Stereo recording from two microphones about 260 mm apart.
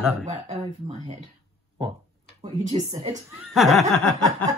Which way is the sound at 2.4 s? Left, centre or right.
Right.